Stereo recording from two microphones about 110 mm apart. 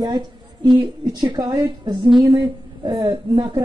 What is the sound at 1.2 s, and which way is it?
A man's voice, 40° right (ahead or behind).